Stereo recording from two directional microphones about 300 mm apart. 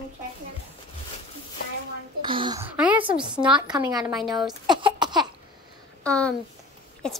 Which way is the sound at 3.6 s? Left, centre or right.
Centre.